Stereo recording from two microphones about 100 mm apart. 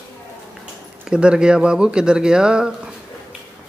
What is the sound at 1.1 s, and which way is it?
Speech, 10° right (ahead or behind).